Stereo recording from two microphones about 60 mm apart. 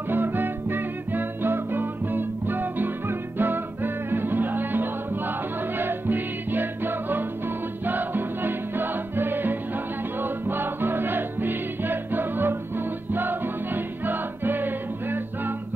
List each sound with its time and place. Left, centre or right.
0.1 s music: right